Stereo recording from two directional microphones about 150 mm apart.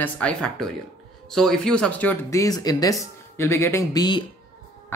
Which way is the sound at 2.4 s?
25° left (ahead or behind).